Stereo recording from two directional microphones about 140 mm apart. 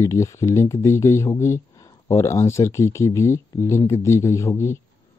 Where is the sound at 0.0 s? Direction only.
20° left (ahead or behind).